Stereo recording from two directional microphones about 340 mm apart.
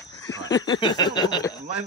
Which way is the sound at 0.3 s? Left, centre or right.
Centre.